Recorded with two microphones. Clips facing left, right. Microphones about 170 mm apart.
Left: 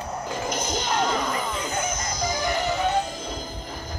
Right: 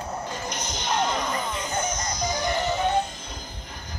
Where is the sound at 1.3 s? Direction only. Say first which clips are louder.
Left 1 dB; 5° left (ahead or behind).